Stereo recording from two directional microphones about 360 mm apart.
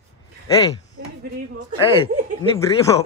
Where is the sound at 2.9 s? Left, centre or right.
Centre.